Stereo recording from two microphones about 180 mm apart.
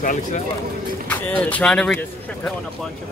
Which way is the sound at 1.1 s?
10° left (ahead or behind).